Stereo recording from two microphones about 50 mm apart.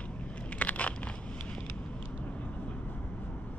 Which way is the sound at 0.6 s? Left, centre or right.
Left.